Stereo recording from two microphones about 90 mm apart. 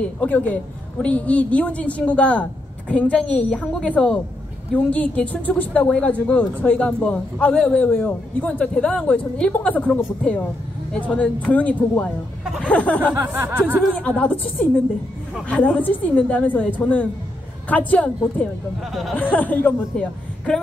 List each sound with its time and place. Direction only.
0.0 s a man's voice: 15° left (ahead or behind)
13.1 s speech: 25° right (ahead or behind)
14.0 s a man's voice: 15° left (ahead or behind)
15.4 s a man's voice: 15° left (ahead or behind)
18.9 s speech: centre (ahead or behind)
19.1 s a man's voice: 20° left (ahead or behind)